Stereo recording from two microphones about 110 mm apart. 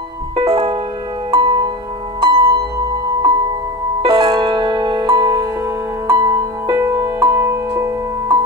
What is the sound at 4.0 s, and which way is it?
Music, 50° right (ahead or behind).